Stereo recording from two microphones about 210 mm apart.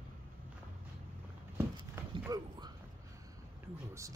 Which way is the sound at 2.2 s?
15° right (ahead or behind).